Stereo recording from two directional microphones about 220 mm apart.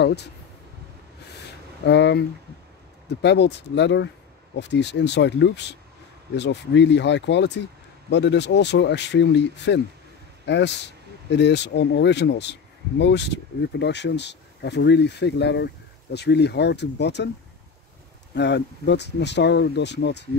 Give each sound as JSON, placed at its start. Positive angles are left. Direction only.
{"t": 0.0, "sound": "speech", "side_deg": 50}
{"t": 1.9, "sound": "speech", "side_deg": 50}
{"t": 18.3, "sound": "speech", "side_deg": 50}